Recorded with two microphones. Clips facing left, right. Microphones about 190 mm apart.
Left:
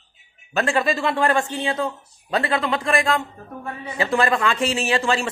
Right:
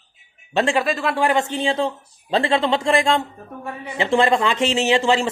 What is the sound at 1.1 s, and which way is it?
Speech, 15° right (ahead or behind).